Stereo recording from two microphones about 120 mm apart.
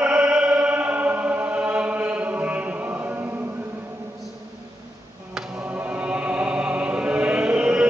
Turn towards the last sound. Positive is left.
turn(degrees=-10)  # may be behind; listen again after turning